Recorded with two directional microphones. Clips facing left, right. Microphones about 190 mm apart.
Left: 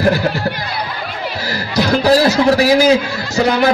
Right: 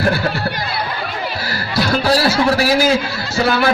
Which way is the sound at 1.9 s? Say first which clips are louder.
Left 4 dB; 20° left (ahead or behind).